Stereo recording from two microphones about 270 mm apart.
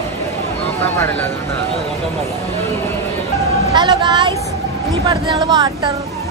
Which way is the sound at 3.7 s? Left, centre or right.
Centre.